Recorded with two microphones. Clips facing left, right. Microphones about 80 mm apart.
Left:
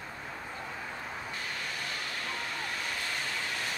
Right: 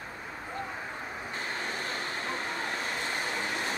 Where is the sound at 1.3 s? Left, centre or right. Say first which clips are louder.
Right 3 dB; right.